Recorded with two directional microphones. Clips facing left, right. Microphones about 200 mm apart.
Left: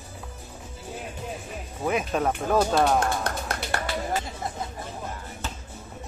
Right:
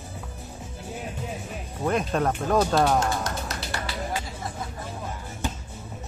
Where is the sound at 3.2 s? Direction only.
55° left (ahead or behind).